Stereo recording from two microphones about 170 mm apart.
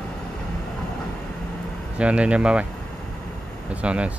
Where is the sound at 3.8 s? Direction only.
5° right (ahead or behind).